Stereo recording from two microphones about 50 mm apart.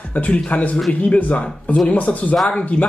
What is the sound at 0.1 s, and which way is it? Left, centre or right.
Speech, left.